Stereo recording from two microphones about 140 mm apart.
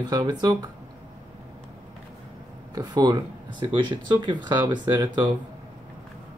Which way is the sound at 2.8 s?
30° right (ahead or behind).